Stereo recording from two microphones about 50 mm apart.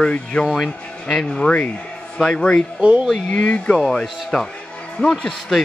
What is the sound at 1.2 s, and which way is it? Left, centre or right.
Speech, centre.